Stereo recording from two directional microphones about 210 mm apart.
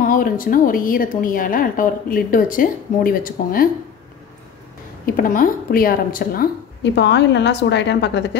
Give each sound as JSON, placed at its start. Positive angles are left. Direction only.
{"t": 0.0, "sound": "a woman's voice", "side_deg": 40}
{"t": 5.0, "sound": "a woman's voice", "side_deg": 40}